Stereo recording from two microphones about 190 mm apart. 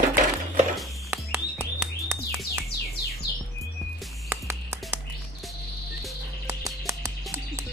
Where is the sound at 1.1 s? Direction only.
10° right (ahead or behind).